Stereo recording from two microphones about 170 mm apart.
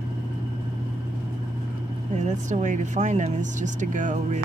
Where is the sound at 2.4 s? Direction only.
45° right (ahead or behind).